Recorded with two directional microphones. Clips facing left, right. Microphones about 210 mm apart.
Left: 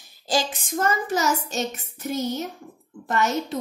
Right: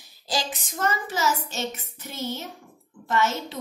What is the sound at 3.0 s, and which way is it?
Speech, 45° left (ahead or behind).